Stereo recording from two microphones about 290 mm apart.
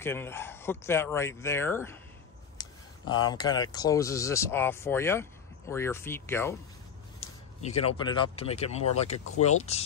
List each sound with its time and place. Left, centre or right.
0.0 s speech: centre
7.2 s speech: left